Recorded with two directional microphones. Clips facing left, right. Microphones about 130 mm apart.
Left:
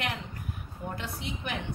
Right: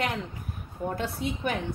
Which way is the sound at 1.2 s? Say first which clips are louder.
Right 7 dB; 45° right (ahead or behind).